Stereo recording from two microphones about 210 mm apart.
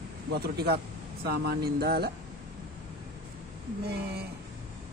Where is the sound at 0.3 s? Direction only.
50° right (ahead or behind).